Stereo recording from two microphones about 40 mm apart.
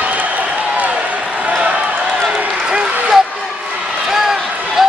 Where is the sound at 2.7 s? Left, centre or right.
Right.